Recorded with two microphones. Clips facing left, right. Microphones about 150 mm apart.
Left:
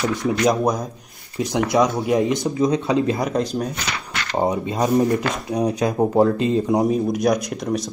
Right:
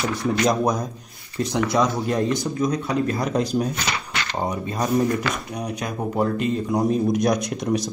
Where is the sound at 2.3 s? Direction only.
20° left (ahead or behind).